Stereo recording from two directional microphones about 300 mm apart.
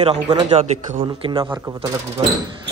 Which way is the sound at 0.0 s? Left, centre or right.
Centre.